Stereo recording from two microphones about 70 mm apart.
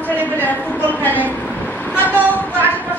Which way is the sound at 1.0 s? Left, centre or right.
Left.